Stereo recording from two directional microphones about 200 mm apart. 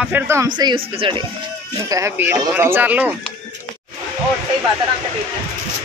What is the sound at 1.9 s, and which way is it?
Speech, 15° right (ahead or behind).